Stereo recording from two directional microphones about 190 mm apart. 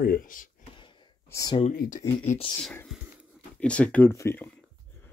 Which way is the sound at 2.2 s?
30° left (ahead or behind).